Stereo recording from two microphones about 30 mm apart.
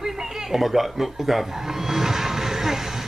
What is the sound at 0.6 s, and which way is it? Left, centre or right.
Speech, centre.